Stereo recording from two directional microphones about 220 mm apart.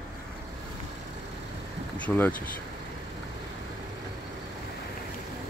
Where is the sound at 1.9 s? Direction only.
5° left (ahead or behind).